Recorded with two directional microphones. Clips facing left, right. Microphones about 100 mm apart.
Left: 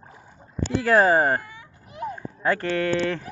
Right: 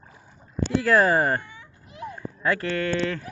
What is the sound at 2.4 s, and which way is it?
Speech, 40° left (ahead or behind).